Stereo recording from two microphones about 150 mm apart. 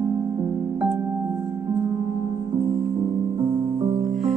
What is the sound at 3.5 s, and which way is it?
Music, 35° right (ahead or behind).